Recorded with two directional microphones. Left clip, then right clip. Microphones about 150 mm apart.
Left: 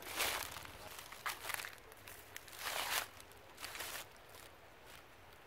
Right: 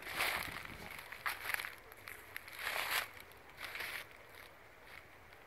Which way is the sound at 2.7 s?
10° right (ahead or behind).